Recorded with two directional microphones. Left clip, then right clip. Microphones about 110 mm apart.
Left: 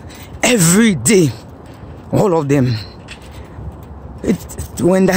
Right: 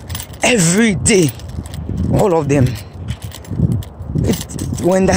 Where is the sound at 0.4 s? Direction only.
40° left (ahead or behind).